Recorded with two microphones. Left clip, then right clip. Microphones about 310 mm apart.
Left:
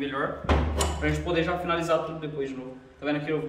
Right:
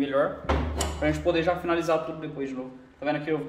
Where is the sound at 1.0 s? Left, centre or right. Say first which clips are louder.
Right 5 dB; centre.